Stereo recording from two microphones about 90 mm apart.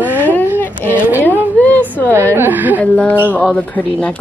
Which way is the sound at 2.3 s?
20° right (ahead or behind).